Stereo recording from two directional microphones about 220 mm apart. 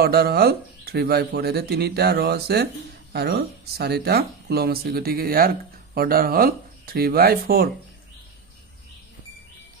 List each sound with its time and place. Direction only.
0.0 s speech: 45° right (ahead or behind)